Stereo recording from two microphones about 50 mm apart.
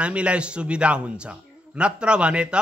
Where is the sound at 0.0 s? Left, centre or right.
Right.